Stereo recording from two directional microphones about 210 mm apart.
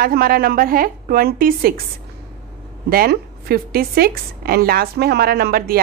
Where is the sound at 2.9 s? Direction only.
45° right (ahead or behind).